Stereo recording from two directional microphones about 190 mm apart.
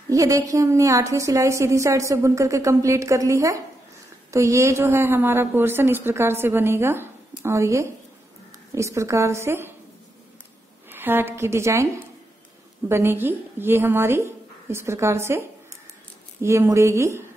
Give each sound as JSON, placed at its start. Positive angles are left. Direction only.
{"t": 0.1, "sound": "a woman's voice", "side_deg": -15}
{"t": 10.9, "sound": "a woman's voice", "side_deg": -10}